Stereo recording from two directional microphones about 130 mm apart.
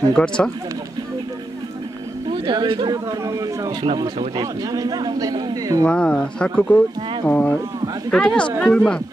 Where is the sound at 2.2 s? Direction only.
35° right (ahead or behind).